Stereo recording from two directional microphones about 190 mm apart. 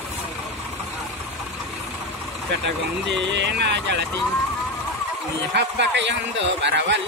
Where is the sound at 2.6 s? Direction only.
70° right (ahead or behind).